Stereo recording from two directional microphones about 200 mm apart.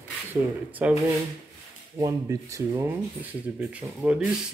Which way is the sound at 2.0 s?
15° right (ahead or behind).